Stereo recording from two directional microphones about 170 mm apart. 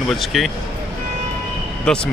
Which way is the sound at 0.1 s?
Centre (ahead or behind).